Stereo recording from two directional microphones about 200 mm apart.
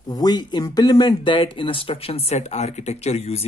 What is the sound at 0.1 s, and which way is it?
Speech, 20° left (ahead or behind).